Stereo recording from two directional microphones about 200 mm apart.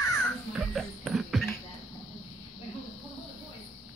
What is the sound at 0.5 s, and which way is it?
Music, centre (ahead or behind).